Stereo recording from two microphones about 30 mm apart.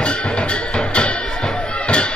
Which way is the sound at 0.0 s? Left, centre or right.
Left.